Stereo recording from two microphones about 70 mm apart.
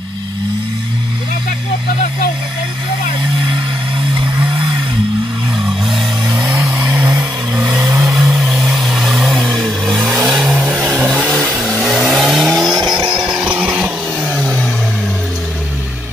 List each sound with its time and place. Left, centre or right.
6.6 s a sound: right
7.1 s vehicle: right
7.8 s vehicle: right
8.3 s a sound: centre
9.6 s vehicle: centre
10.0 s vehicle: right
10.3 s vehicle: centre
11.2 s vehicle: centre
13.1 s a sound: centre
14.2 s vehicle: centre